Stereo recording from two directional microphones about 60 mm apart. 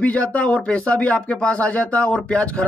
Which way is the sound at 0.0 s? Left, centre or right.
Left.